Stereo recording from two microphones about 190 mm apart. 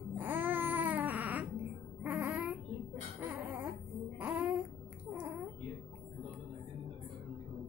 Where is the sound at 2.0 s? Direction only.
10° right (ahead or behind).